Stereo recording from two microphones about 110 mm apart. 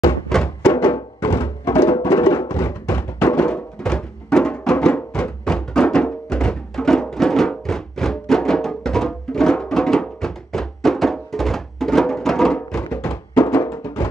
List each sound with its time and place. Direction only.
0.6 s music: 25° left (ahead or behind)